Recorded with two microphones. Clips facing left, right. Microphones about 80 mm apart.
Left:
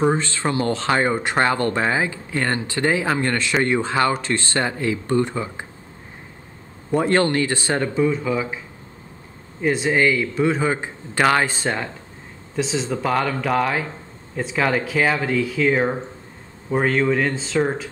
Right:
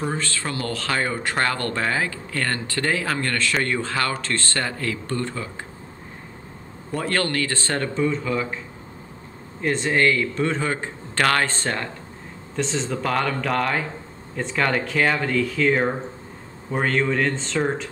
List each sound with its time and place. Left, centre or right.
0.1 s speech: left
7.0 s a man's voice: left
9.6 s a man's voice: centre